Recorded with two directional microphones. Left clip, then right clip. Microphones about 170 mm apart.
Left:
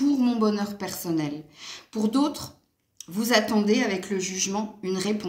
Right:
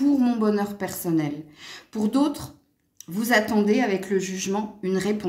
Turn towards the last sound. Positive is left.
turn(degrees=-35)  # may be behind; listen again after turning